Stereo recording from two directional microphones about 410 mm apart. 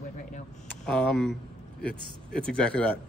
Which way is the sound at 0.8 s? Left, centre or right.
Centre.